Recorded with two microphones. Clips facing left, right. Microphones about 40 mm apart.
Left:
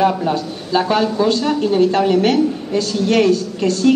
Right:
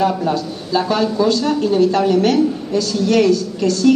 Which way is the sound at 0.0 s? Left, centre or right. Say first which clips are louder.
Left 1 dB; left.